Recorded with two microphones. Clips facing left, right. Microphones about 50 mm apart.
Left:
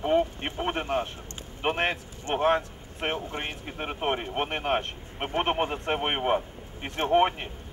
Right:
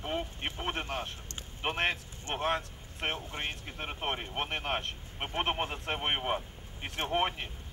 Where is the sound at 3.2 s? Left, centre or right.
Left.